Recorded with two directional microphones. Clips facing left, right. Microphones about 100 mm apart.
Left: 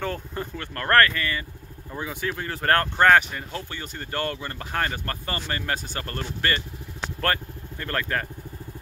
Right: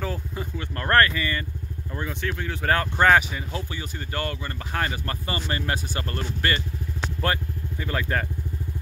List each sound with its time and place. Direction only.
0.0 s a sound: 5° right (ahead or behind)
0.7 s speech: 15° right (ahead or behind)
2.0 s speech: 5° left (ahead or behind)